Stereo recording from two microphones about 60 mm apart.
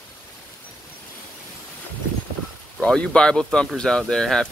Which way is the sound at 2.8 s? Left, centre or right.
Centre.